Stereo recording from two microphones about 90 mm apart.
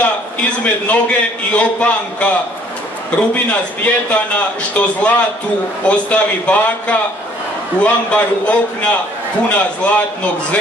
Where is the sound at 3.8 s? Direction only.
15° left (ahead or behind).